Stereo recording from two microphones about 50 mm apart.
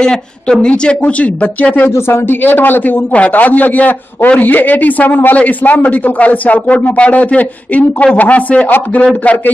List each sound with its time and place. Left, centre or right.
0.0 s speech: centre; by 1.9 s left
1.9 s a man's voice: left